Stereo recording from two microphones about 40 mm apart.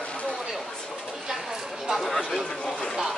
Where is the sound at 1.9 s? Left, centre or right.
Centre.